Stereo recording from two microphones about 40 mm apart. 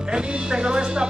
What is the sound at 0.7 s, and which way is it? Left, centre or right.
Music, right.